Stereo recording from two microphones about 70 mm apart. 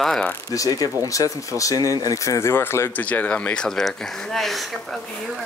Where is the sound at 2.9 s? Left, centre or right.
Left; by 5.0 s centre.